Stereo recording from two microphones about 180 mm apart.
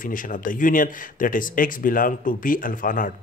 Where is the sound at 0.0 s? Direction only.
50° left (ahead or behind).